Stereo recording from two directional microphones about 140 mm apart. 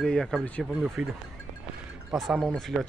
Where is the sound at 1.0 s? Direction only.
5° right (ahead or behind).